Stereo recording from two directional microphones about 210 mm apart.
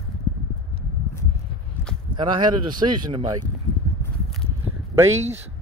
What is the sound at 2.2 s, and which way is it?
Speech, 20° right (ahead or behind).